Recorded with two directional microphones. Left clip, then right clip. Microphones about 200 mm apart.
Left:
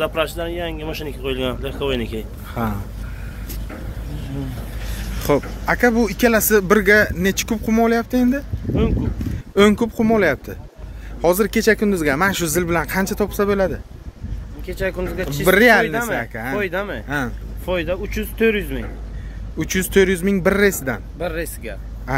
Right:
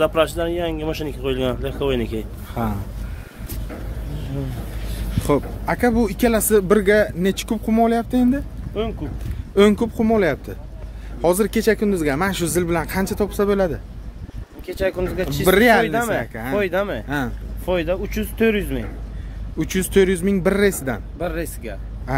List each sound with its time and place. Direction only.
0.0 s speech: 55° right (ahead or behind)
2.5 s speech: 5° right (ahead or behind)
5.2 s speech: 5° right (ahead or behind)
9.6 s speech: centre (ahead or behind)
13.5 s speech: 15° right (ahead or behind)
14.7 s speech: 65° right (ahead or behind)
15.4 s speech: 5° right (ahead or behind)
15.9 s speech: 75° right (ahead or behind)
19.6 s speech: centre (ahead or behind)
21.2 s speech: 50° right (ahead or behind)